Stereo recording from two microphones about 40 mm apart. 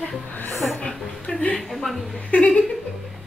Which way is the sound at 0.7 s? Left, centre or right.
Left.